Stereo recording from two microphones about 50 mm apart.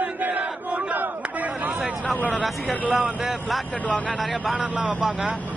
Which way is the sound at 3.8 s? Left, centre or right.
Left.